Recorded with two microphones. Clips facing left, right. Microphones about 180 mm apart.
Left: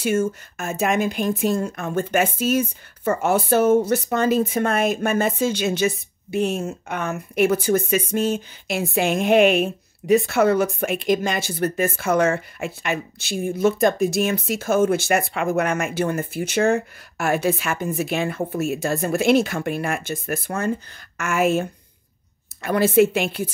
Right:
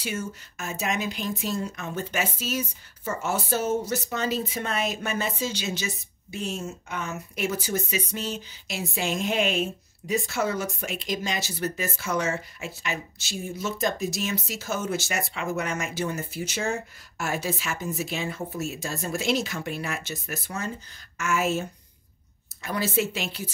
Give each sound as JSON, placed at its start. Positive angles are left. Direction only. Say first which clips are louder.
{"t": 0.0, "sound": "speech", "louder": "left 11 dB", "side_deg": 50}